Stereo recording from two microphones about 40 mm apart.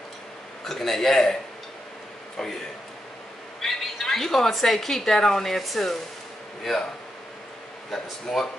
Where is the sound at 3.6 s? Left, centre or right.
Centre.